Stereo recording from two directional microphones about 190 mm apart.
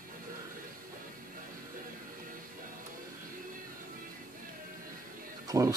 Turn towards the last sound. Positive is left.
turn(degrees=-15)  # may be behind; listen again after turning